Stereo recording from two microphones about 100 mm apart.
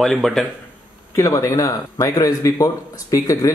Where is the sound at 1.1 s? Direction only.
30° left (ahead or behind).